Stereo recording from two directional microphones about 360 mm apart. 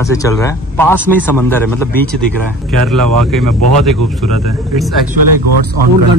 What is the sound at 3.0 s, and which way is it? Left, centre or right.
Speech, right.